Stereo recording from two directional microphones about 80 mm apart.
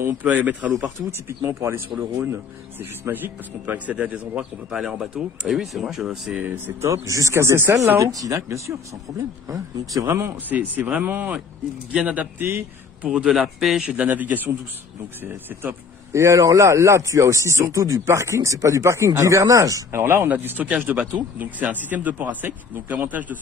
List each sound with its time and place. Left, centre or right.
0.0 s speech: right
1.4 s a man's voice: right; by 6.1 s centre
6.3 s speech: right
6.8 s a man's voice: right
8.0 s a man's voice: right
10.0 s a man's voice: right
10.5 s speech: right
13.0 s speech: centre
13.8 s a man's voice: centre; by 19.8 s right
19.9 s speech: right